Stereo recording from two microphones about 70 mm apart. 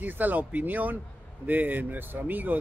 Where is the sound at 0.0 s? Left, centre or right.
Right.